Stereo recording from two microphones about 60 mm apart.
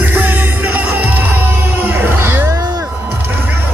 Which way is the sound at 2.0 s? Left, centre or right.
Right.